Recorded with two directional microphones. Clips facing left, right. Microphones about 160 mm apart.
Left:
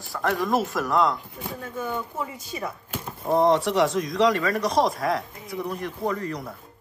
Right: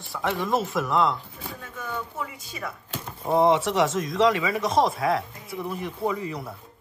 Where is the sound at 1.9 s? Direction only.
25° left (ahead or behind).